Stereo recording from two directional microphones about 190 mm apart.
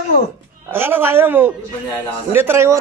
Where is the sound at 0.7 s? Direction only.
10° right (ahead or behind).